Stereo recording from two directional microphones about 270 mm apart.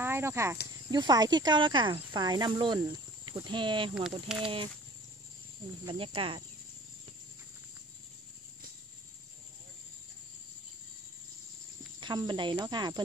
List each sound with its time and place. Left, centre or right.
0.0 s speech: centre
4.3 s speech: centre
5.9 s speech: centre
12.0 s speech: centre